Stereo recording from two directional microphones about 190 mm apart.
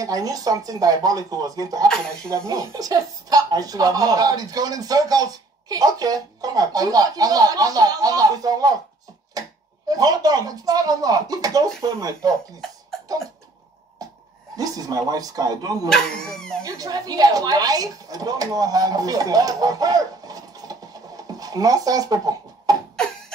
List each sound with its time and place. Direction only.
0.0 s speech: 20° right (ahead or behind)
9.8 s speech: 20° right (ahead or behind)
14.0 s a sound: 20° right (ahead or behind)
14.6 s speech: 20° right (ahead or behind)
15.9 s speech: 5° left (ahead or behind)
16.6 s speech: 20° right (ahead or behind)